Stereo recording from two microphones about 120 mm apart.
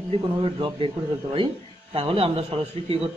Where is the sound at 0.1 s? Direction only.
45° right (ahead or behind).